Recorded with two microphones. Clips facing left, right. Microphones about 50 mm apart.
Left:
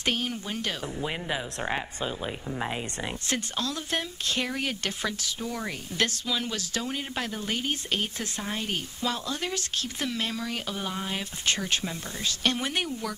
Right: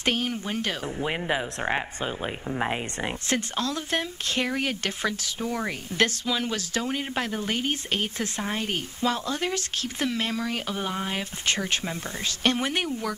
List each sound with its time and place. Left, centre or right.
0.0 s speech: right
1.0 s speech: right
3.3 s speech: right